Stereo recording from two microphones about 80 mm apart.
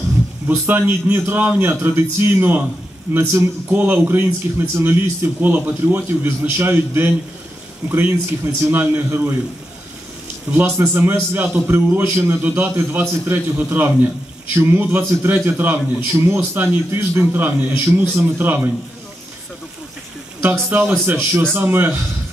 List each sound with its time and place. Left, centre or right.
0.5 s a man's voice: right
3.7 s a man's voice: right
10.5 s a man's voice: right
20.4 s a man's voice: right